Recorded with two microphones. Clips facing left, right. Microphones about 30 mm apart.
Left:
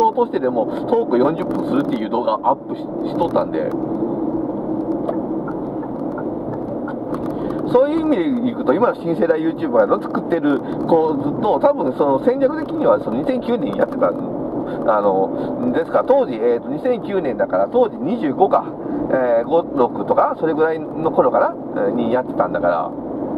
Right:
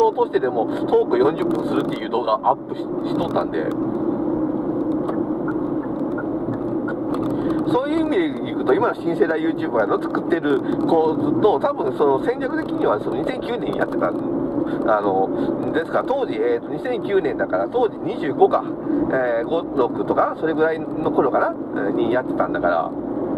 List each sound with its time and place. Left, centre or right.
0.0 s speech: centre
7.7 s speech: centre
8.8 s speech: centre
11.2 s speech: centre
14.9 s speech: centre